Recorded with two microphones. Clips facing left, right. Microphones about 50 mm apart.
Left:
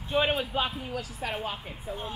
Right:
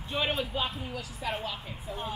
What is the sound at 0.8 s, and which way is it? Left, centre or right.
Speech, left.